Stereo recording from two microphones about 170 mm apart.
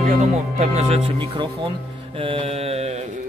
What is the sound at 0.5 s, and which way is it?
Speech, 40° right (ahead or behind).